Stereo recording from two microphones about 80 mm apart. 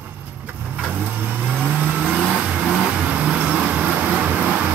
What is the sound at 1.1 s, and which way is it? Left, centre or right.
Vehicle, right.